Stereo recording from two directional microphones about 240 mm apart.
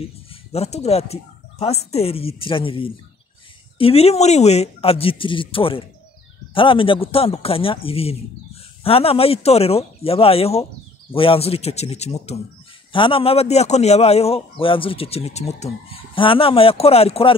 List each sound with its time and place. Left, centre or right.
0.3 s a man's voice: left